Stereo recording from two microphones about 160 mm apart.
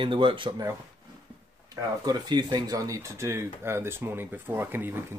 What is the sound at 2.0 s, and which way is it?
Speech, 25° right (ahead or behind).